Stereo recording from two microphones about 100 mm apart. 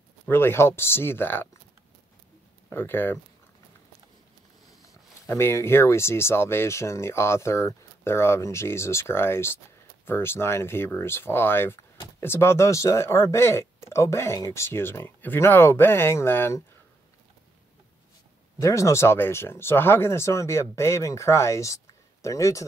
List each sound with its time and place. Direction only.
0.3 s speech: 25° left (ahead or behind)
2.7 s speech: 20° left (ahead or behind)
4.8 s speech: 30° left (ahead or behind)
18.6 s speech: 30° left (ahead or behind)